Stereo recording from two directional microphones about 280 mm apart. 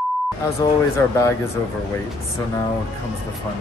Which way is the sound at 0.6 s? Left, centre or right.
Centre.